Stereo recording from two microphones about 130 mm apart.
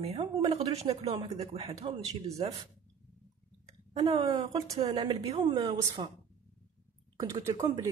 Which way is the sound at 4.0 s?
35° right (ahead or behind).